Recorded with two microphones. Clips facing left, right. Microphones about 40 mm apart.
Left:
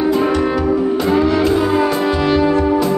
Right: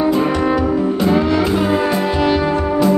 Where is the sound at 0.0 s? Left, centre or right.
Centre.